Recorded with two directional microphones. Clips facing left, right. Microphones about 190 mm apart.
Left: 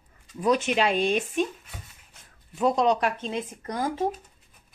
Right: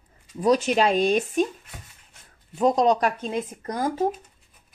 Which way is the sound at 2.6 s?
40° right (ahead or behind).